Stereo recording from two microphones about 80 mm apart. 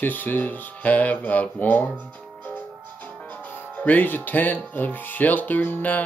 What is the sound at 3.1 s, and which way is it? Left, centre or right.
Music, centre.